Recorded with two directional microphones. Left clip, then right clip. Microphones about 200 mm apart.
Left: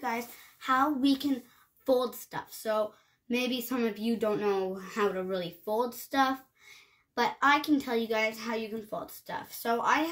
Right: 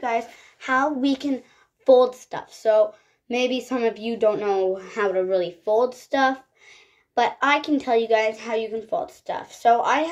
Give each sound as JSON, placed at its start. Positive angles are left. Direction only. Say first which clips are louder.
{"t": 0.0, "sound": "speech", "louder": "right 9 dB", "side_deg": 15}